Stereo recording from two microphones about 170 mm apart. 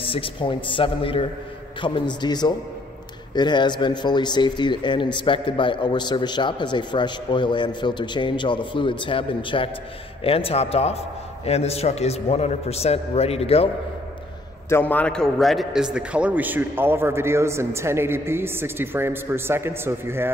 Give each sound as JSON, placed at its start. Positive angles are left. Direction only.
{"t": 0.0, "sound": "a man's voice", "side_deg": 30}
{"t": 14.7, "sound": "a man's voice", "side_deg": 10}